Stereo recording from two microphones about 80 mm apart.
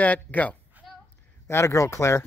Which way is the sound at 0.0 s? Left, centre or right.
Centre.